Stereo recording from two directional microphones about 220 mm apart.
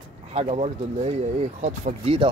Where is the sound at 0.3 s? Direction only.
30° right (ahead or behind).